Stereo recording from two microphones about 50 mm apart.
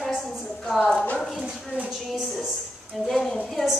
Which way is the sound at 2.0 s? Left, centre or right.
Centre.